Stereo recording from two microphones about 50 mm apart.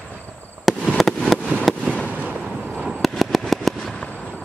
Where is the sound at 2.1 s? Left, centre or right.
Right.